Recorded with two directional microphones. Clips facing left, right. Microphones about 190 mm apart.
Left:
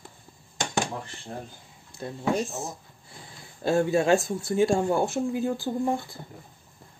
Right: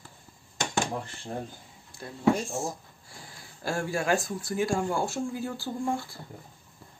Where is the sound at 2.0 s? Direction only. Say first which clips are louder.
Left 6 dB; 25° left (ahead or behind).